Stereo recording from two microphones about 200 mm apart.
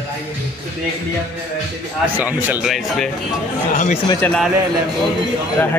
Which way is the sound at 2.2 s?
10° right (ahead or behind).